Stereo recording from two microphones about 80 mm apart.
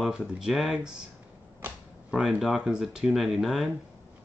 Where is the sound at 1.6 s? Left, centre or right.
Right.